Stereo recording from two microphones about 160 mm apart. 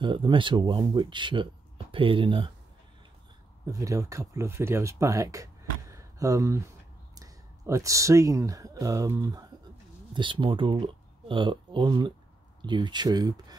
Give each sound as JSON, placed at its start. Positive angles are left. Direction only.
{"t": 0.0, "sound": "speech", "side_deg": -30}
{"t": 3.6, "sound": "speech", "side_deg": -20}